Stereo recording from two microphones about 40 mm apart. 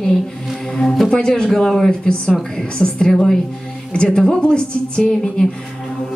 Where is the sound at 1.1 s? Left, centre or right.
Centre.